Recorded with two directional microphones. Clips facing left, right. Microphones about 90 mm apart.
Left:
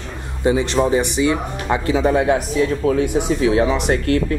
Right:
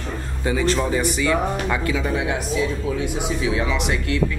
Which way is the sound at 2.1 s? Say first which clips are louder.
Left 7 dB; 45° left (ahead or behind).